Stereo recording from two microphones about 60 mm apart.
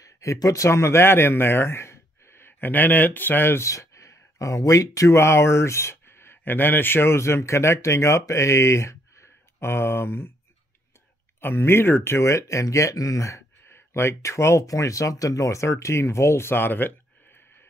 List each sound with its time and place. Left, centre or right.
0.0 s speech: left
3.6 s speech: left
11.4 s speech: left
13.7 s speech: left